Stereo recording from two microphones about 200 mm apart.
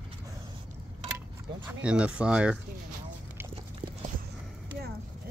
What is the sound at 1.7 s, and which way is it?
Speech, 5° right (ahead or behind).